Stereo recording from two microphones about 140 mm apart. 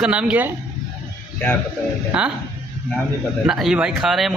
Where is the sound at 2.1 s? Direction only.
10° right (ahead or behind).